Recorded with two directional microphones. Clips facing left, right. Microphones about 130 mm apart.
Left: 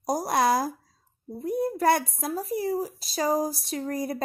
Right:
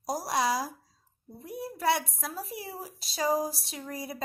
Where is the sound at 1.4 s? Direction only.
45° left (ahead or behind).